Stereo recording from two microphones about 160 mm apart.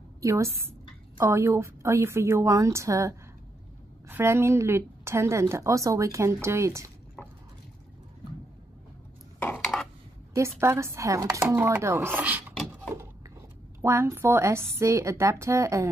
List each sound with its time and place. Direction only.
0.2 s speech: 20° right (ahead or behind)
7.2 s liquid: 10° left (ahead or behind)
9.4 s a sound: 10° left (ahead or behind)
10.6 s speech: 15° right (ahead or behind)
13.7 s speech: 15° right (ahead or behind)